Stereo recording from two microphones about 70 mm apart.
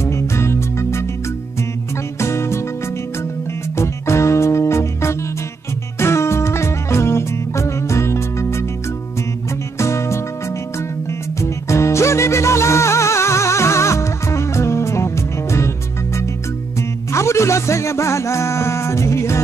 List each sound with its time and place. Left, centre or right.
0.0 s music: left
2.1 s music: left
3.7 s music: left
9.8 s music: left
17.1 s music: left